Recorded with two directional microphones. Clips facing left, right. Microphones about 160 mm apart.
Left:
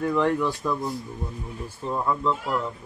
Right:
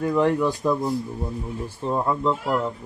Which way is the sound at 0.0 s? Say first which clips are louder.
Right 2 dB; 15° right (ahead or behind).